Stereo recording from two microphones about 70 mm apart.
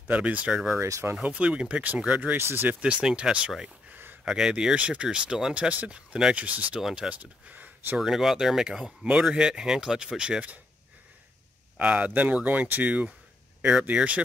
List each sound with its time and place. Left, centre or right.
0.1 s speech: right
0.5 s speech: centre
0.7 s speech: right
1.1 s speech: centre
2.3 s speech: right
2.8 s speech: centre
3.9 s a sound: right
4.2 s speech: centre
6.8 s speech: centre
7.1 s speech: right
8.0 s speech: centre
8.8 s speech: right
9.2 s speech: centre
11.7 s speech: centre